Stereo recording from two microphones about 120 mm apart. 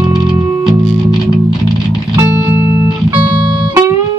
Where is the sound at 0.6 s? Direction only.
Centre (ahead or behind).